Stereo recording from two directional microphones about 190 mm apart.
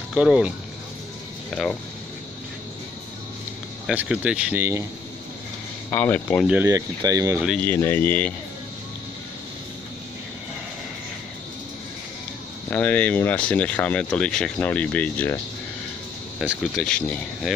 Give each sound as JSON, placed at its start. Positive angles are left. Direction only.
{"t": 0.1, "sound": "speech", "side_deg": -5}
{"t": 3.8, "sound": "speech", "side_deg": -5}
{"t": 5.9, "sound": "speech", "side_deg": 10}
{"t": 6.4, "sound": "speech", "side_deg": -10}
{"t": 7.3, "sound": "speech", "side_deg": 0}
{"t": 7.6, "sound": "speech", "side_deg": 10}
{"t": 12.6, "sound": "speech", "side_deg": 10}
{"t": 16.3, "sound": "speech", "side_deg": 0}